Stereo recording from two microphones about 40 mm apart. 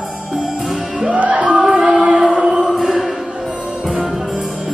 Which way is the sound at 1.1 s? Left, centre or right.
Right.